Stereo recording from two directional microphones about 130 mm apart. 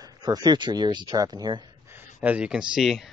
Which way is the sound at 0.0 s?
30° right (ahead or behind).